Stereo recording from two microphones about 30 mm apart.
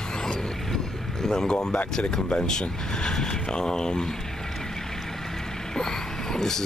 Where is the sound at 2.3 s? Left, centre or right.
Left.